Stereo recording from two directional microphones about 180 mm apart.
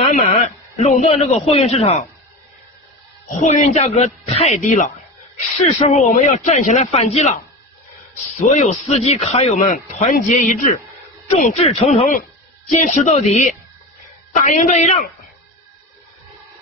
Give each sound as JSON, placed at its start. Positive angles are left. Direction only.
{"t": 0.0, "sound": "a man's voice", "side_deg": 35}
{"t": 3.3, "sound": "a man's voice", "side_deg": 35}
{"t": 8.4, "sound": "a man's voice", "side_deg": 35}